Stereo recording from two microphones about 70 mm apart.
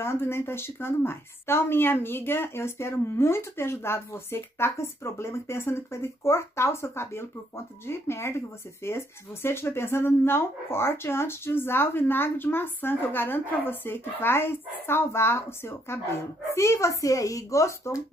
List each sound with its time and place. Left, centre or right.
0.0 s speech: left